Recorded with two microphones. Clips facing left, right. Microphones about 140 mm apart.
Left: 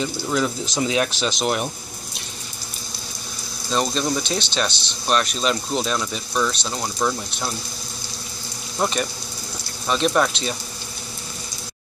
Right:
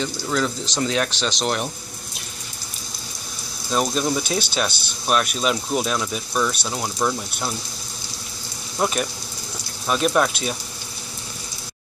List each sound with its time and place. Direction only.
0.0 s speech: 5° left (ahead or behind)
3.7 s speech: 5° right (ahead or behind)
8.7 s speech: centre (ahead or behind)